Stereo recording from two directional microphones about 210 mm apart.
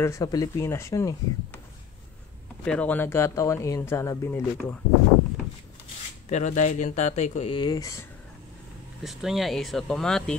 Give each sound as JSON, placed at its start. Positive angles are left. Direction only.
{"t": 0.0, "sound": "speech", "side_deg": 15}
{"t": 2.6, "sound": "speech", "side_deg": 5}
{"t": 6.2, "sound": "speech", "side_deg": 35}
{"t": 9.0, "sound": "speech", "side_deg": 0}